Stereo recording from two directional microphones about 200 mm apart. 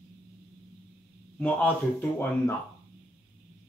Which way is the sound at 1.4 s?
10° left (ahead or behind).